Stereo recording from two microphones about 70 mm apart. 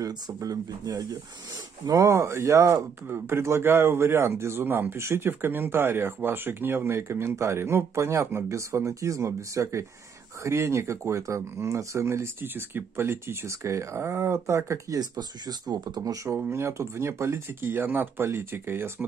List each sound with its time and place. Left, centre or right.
0.0 s speech: right
3.1 s speech: right
15.0 s speech: right
16.3 s speech: right